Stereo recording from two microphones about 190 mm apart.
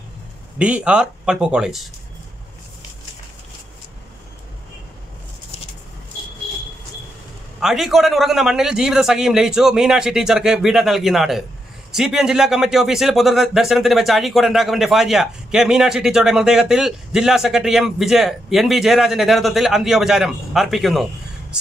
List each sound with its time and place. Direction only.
0.6 s speech: 5° right (ahead or behind)
7.6 s speech: centre (ahead or behind)